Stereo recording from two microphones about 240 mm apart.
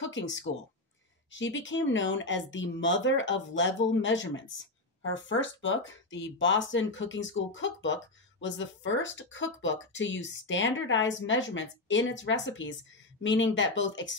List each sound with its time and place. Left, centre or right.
0.0 s speech: left
1.3 s speech: left